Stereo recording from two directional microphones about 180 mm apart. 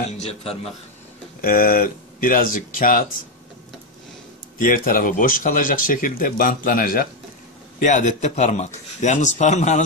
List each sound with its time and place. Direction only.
0.2 s speech: 35° left (ahead or behind)
1.4 s speech: 50° left (ahead or behind)
4.6 s speech: 50° left (ahead or behind)